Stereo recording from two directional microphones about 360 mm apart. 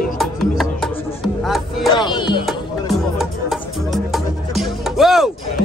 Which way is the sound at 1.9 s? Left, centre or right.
Centre.